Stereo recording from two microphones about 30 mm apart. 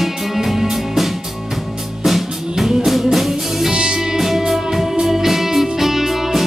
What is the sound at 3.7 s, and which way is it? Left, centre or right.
Music, right.